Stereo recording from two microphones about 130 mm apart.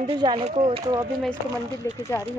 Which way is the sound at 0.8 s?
35° right (ahead or behind).